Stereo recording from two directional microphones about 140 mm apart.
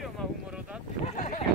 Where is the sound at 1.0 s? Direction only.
60° left (ahead or behind).